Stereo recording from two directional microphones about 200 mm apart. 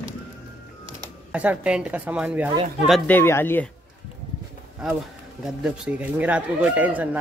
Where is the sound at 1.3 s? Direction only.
5° right (ahead or behind).